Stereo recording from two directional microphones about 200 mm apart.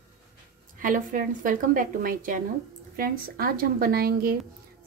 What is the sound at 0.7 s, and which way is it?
Speech, 40° right (ahead or behind).